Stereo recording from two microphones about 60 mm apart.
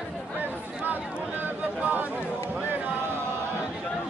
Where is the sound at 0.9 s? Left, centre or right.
Right.